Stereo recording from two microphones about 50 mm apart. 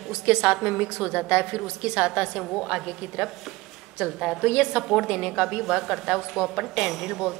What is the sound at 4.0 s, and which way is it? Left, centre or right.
A woman's voice, centre.